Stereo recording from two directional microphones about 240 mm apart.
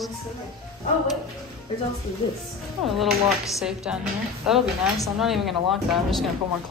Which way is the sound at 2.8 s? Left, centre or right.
Centre.